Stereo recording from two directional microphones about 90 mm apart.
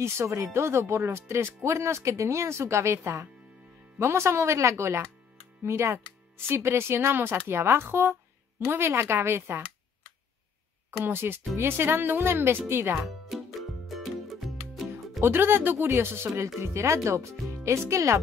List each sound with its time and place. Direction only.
0.0 s speech: 35° right (ahead or behind)
11.1 s speech: 25° right (ahead or behind)
13.0 s music: centre (ahead or behind)
15.1 s speech: 25° right (ahead or behind)